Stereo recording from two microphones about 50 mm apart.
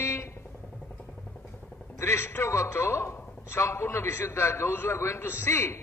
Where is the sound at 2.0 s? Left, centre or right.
Left.